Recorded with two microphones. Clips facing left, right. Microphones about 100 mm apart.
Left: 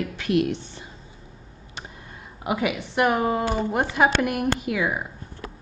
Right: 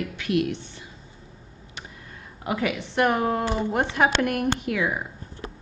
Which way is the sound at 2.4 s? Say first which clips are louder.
Left 1 dB; 10° left (ahead or behind).